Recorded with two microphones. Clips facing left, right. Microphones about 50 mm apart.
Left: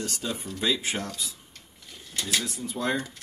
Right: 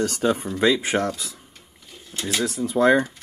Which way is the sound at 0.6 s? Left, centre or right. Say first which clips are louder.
Right 7 dB; right.